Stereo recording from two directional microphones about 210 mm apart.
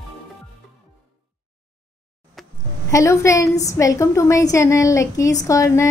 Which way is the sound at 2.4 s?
Centre (ahead or behind).